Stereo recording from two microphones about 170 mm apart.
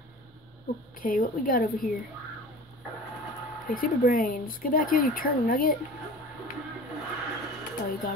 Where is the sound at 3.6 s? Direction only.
55° left (ahead or behind).